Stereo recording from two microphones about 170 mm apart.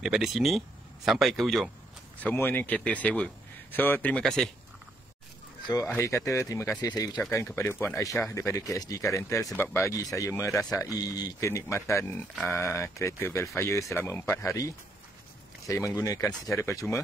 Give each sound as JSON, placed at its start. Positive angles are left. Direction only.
{"t": 0.0, "sound": "speech", "side_deg": 0}
{"t": 2.2, "sound": "speech", "side_deg": 10}
{"t": 5.9, "sound": "speech", "side_deg": 15}
{"t": 15.9, "sound": "speech", "side_deg": 20}